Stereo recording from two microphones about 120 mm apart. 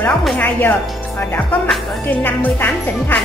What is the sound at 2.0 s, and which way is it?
Speech, 15° left (ahead or behind).